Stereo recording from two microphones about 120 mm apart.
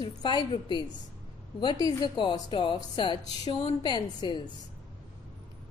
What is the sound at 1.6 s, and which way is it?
A woman's voice, 35° left (ahead or behind).